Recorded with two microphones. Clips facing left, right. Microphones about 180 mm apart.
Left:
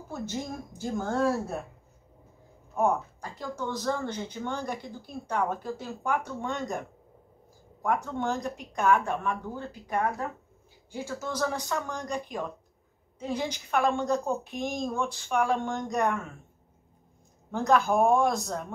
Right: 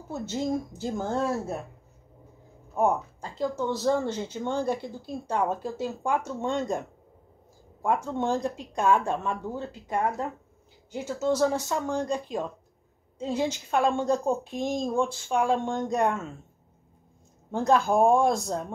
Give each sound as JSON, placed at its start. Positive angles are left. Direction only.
{"t": 0.1, "sound": "speech", "side_deg": -20}
{"t": 2.8, "sound": "speech", "side_deg": -25}
{"t": 7.8, "sound": "speech", "side_deg": -25}
{"t": 17.5, "sound": "speech", "side_deg": -30}